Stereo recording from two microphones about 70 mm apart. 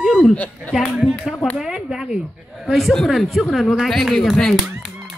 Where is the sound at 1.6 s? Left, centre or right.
Centre.